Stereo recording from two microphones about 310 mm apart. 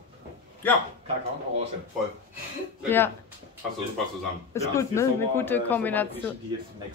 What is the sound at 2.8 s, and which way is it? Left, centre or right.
Speech, centre.